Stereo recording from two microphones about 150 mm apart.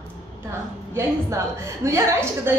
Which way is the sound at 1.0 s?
20° right (ahead or behind).